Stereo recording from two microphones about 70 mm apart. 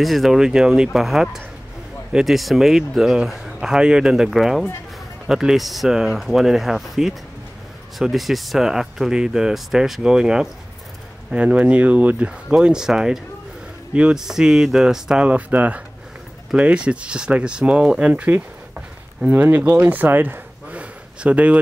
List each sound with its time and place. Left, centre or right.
0.0 s speech: centre